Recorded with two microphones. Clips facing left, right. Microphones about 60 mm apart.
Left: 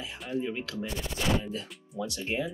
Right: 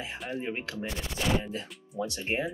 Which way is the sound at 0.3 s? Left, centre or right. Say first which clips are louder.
Left 3 dB; right.